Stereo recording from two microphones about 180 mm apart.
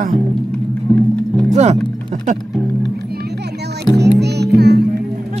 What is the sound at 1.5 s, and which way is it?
Speech, 40° right (ahead or behind).